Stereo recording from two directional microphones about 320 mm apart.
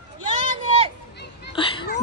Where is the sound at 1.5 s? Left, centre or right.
Centre.